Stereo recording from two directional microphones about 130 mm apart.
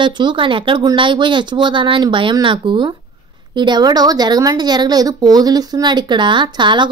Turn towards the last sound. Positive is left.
turn(degrees=-35)  # may be behind; listen again after turning